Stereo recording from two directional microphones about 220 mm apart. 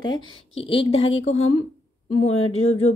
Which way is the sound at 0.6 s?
25° left (ahead or behind).